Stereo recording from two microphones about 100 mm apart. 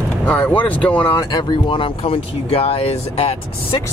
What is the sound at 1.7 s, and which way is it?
Speech, 65° left (ahead or behind).